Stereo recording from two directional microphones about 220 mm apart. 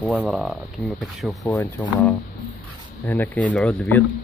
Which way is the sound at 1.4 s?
15° left (ahead or behind).